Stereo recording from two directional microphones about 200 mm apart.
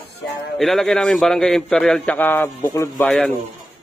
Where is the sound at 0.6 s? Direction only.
Centre (ahead or behind).